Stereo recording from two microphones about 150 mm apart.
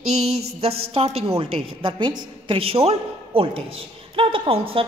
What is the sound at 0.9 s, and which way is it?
A man's voice, 40° right (ahead or behind).